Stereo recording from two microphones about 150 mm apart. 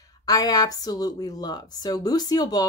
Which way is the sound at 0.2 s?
25° left (ahead or behind).